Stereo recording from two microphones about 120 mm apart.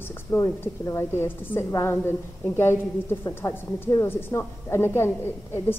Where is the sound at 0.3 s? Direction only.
25° left (ahead or behind).